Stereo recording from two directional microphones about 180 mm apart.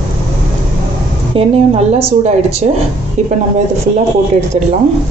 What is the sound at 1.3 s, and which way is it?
Speech, 35° right (ahead or behind).